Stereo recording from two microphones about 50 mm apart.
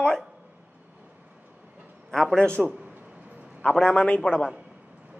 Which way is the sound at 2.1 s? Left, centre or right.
Centre.